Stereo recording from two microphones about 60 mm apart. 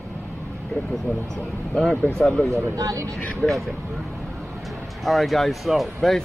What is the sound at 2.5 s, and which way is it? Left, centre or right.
Speech, right.